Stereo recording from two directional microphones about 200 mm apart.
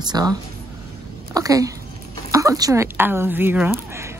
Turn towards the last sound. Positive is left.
turn(degrees=-10)  # may be behind; listen again after turning